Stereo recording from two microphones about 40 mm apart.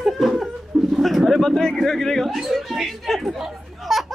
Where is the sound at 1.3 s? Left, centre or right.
Centre.